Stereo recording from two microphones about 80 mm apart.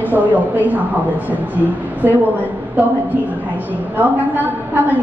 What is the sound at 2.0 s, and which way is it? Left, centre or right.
Speech, right.